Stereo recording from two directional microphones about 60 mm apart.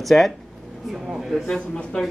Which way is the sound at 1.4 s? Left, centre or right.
Centre.